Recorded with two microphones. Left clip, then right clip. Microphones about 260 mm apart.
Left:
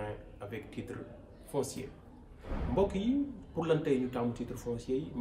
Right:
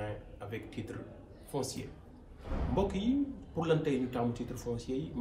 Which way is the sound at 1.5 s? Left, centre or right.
Centre.